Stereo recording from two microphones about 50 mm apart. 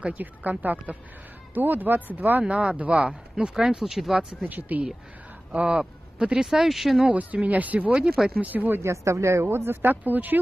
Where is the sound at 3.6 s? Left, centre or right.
Centre.